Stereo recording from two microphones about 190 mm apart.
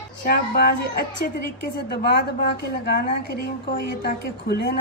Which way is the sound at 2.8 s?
55° left (ahead or behind).